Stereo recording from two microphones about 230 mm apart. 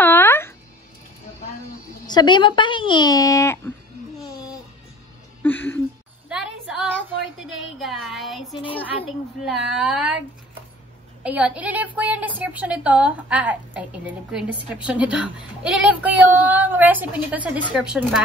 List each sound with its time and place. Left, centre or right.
0.0 s music: centre
2.0 s speech: centre
5.4 s a sound: centre
6.2 s a sound: centre
7.3 s a woman's voice: centre
11.2 s a woman's voice: centre